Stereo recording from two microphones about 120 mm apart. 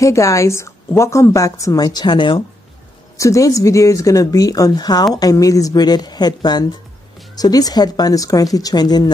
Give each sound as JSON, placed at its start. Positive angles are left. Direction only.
{"t": 0.0, "sound": "a woman's voice", "side_deg": 25}
{"t": 3.2, "sound": "a woman's voice", "side_deg": 25}